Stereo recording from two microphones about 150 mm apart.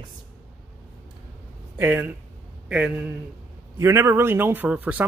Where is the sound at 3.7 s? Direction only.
20° right (ahead or behind).